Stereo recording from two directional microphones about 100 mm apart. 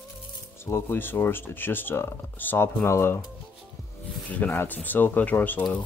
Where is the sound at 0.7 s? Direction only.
20° left (ahead or behind).